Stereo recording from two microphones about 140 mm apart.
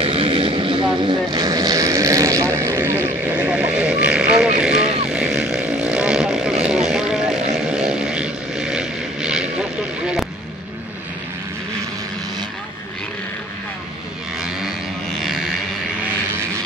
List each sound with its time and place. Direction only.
0.0 s vehicle: 40° right (ahead or behind); by 3.0 s 20° right (ahead or behind)
3.4 s vehicle: 5° right (ahead or behind)
4.8 s vehicle: 50° right (ahead or behind)
5.1 s vehicle: 5° right (ahead or behind)
15.1 s a sound: centre (ahead or behind)